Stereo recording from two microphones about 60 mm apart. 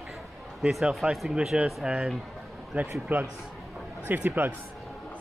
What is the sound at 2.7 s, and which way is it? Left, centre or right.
Speech, right.